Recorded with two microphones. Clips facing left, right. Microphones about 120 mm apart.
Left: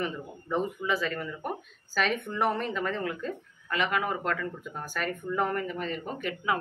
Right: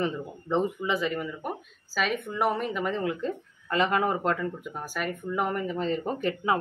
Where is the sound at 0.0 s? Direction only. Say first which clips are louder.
Right 4 dB; 25° right (ahead or behind).